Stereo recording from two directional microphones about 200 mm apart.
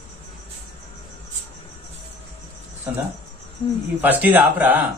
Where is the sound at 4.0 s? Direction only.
10° right (ahead or behind).